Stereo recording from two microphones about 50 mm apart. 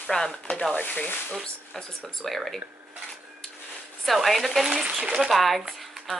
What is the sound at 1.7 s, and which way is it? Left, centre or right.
Speech, centre.